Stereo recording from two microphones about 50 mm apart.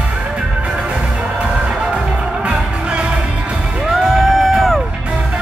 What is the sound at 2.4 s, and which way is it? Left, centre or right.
Music, right.